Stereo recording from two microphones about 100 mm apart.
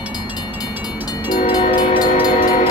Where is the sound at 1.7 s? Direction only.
45° left (ahead or behind).